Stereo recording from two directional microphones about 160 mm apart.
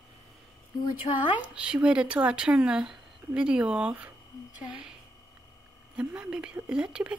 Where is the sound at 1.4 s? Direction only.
10° right (ahead or behind).